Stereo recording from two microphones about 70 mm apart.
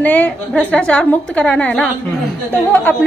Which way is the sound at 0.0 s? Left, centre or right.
Left.